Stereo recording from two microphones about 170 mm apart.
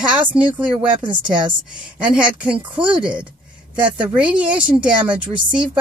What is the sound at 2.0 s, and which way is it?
Speech, 10° right (ahead or behind).